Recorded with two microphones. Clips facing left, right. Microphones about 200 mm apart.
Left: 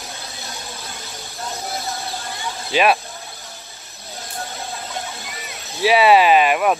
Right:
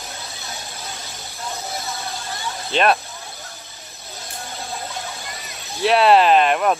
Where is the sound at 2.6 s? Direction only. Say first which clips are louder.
Left 1 dB; 5° left (ahead or behind).